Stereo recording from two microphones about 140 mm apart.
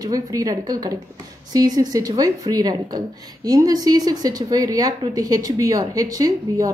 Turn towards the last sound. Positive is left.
turn(degrees=-25)  # may be behind; listen again after turning